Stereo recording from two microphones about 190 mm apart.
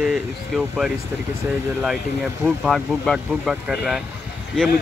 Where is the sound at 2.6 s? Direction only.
Centre (ahead or behind).